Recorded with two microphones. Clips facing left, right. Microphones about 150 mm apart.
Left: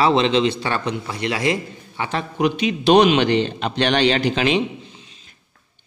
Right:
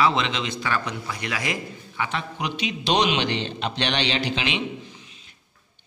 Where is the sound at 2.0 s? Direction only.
40° left (ahead or behind).